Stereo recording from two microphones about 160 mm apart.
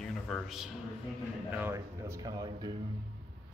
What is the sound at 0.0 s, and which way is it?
Music, centre (ahead or behind).